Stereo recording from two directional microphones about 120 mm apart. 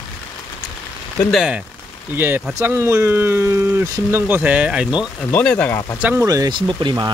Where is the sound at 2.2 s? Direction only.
15° right (ahead or behind).